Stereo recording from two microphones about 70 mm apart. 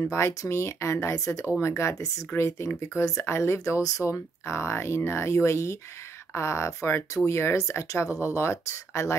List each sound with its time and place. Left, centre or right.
0.0 s speech: left